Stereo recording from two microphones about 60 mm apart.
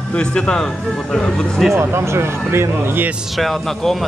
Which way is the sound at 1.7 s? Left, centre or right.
Right.